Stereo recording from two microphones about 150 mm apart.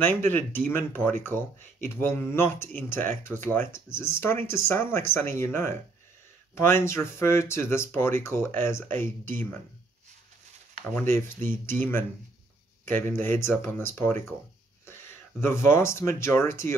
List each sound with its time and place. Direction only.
0.0 s speech: 15° left (ahead or behind)
11.0 s speech: 15° left (ahead or behind)
15.4 s speech: 15° left (ahead or behind)